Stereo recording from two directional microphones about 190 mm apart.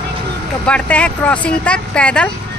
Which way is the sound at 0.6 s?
5° left (ahead or behind).